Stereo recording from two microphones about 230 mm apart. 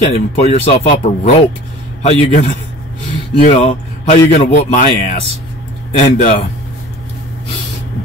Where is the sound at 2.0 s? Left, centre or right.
Left.